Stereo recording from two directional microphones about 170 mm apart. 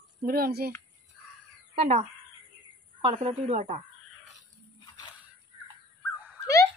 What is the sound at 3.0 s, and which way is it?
Speech, 35° right (ahead or behind).